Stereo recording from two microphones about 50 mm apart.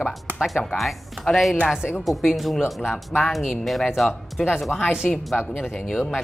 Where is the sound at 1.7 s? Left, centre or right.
Centre.